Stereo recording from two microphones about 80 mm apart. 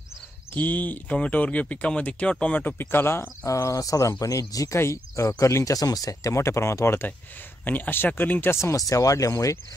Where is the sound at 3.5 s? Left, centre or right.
Left.